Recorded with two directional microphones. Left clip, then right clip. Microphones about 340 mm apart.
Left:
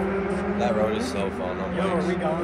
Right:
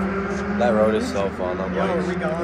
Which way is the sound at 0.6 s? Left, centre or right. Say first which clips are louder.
Right 7 dB; right.